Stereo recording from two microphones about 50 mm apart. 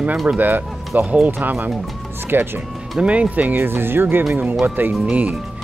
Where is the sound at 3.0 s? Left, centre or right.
Right.